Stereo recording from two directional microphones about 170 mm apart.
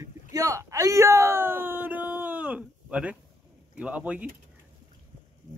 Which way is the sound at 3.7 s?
5° right (ahead or behind).